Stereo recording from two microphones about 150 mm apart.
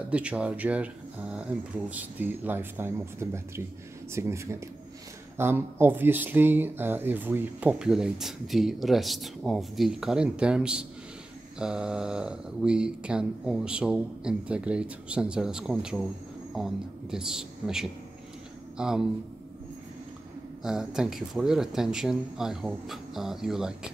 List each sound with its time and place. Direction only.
0.1 s speech: 10° right (ahead or behind)
20.6 s speech: 5° right (ahead or behind)